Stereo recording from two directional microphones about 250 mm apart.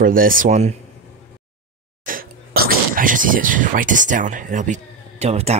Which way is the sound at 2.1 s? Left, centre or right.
Right.